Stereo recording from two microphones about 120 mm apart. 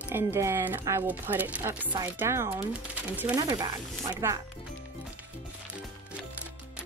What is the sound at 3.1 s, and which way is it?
Chopping, 15° right (ahead or behind).